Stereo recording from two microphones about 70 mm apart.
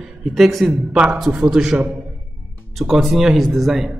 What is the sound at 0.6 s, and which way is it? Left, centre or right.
A man's voice, centre.